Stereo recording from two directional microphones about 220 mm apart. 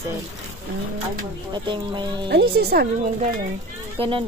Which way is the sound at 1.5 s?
20° right (ahead or behind).